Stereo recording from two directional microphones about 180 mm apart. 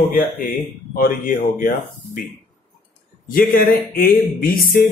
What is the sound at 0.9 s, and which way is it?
Speech, 50° left (ahead or behind).